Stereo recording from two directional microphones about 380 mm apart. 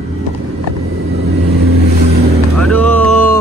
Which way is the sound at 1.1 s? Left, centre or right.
Right.